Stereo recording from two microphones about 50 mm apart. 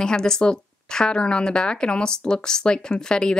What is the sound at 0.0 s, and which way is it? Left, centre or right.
A woman's voice, centre.